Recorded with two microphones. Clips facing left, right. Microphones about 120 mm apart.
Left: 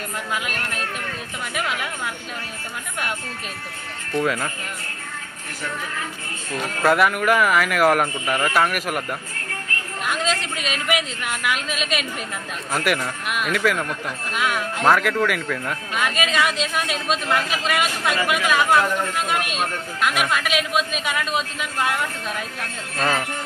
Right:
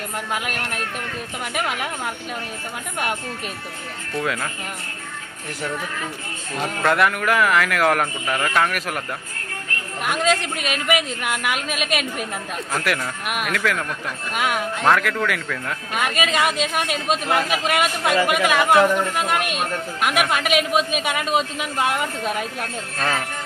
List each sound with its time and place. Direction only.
0.3 s speech: 50° right (ahead or behind)
4.2 s speech: centre (ahead or behind)
6.8 s speech: 5° left (ahead or behind)
10.0 s speech: 55° right (ahead or behind)
12.7 s speech: 5° left (ahead or behind)
14.3 s speech: 50° right (ahead or behind)
14.8 s speech: 5° left (ahead or behind)
15.9 s speech: 50° right (ahead or behind)